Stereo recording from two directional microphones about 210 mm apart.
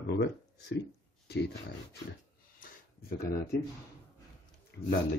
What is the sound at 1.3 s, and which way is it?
Speech, 50° left (ahead or behind).